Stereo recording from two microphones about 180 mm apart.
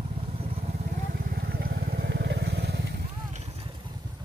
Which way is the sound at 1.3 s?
60° right (ahead or behind).